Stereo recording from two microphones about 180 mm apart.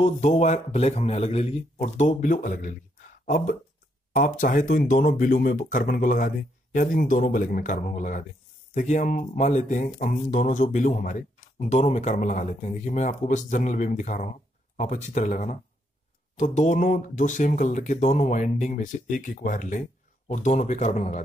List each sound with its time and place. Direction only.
0.0 s a man's voice: 40° left (ahead or behind)